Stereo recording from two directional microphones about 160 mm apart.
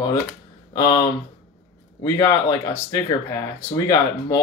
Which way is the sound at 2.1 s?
20° left (ahead or behind).